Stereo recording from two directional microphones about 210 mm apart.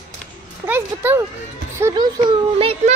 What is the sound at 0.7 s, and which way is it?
A child's voice, 10° right (ahead or behind).